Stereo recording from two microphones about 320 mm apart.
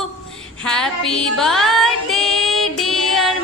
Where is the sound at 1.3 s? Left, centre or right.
Centre.